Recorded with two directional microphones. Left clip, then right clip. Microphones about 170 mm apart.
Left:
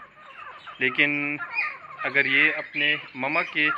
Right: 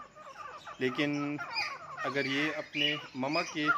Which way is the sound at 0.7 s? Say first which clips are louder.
Left 10 dB; 25° right (ahead or behind).